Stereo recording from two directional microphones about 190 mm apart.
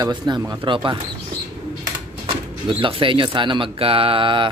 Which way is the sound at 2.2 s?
25° right (ahead or behind).